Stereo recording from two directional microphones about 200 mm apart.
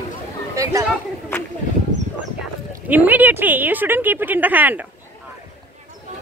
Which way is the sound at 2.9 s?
10° right (ahead or behind).